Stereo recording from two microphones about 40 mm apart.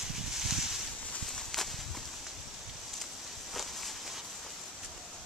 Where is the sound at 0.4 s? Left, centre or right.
Centre.